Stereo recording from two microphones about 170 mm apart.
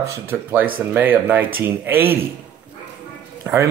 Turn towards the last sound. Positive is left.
turn(degrees=-15)  # may be behind; listen again after turning